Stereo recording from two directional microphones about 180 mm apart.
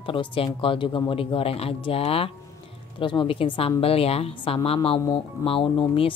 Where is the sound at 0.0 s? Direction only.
30° left (ahead or behind).